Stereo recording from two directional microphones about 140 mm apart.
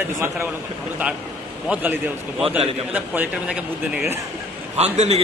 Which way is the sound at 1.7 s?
15° right (ahead or behind).